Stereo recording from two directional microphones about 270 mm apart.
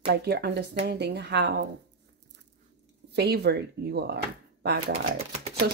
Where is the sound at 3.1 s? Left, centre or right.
Right.